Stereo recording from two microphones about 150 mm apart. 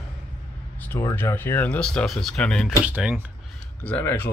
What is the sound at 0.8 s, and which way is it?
Speech, 20° left (ahead or behind).